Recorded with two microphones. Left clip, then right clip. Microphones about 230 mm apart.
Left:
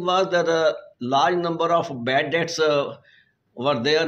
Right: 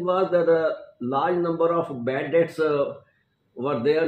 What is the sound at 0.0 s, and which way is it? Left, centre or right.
A man's voice, left.